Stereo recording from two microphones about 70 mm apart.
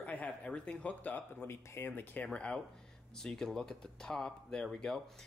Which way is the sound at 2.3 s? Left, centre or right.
Centre.